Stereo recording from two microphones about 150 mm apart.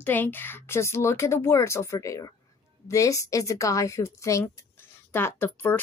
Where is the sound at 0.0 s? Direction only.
15° left (ahead or behind).